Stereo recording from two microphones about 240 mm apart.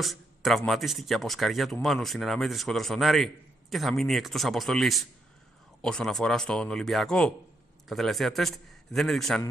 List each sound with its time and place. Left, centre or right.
0.0 s speech: centre